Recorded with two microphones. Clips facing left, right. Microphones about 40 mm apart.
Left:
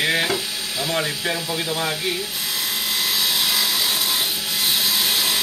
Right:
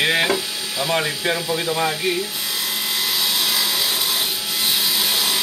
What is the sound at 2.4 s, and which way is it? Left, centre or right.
Wood, centre.